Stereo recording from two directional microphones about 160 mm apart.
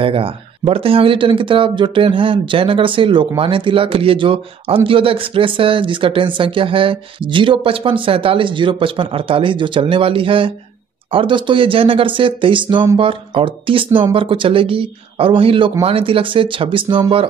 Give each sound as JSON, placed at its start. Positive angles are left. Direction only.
{"t": 0.0, "sound": "speech", "side_deg": -35}